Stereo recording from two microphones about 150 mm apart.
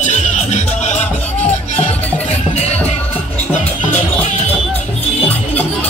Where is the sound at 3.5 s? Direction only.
10° left (ahead or behind).